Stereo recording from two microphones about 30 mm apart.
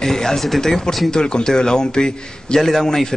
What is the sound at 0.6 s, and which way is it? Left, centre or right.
A man's voice, centre.